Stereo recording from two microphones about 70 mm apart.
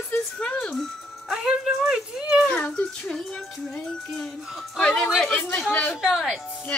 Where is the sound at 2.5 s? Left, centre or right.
Centre.